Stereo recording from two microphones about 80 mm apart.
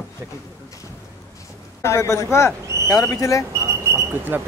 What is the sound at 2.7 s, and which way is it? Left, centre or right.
Owl, right.